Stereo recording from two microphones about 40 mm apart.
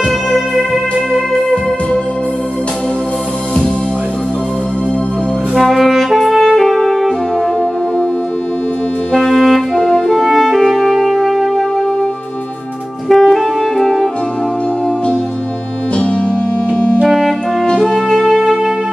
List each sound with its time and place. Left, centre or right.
5.5 s music: centre
9.1 s music: centre
9.8 s music: centre
10.1 s music: centre
13.1 s music: centre
16.7 s music: left
17.6 s music: centre
18.1 s music: centre
18.4 s music: centre